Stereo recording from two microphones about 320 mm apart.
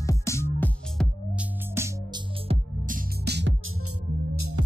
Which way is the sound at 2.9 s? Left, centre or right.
Right.